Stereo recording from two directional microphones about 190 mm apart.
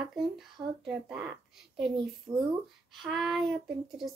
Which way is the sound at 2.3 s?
20° right (ahead or behind).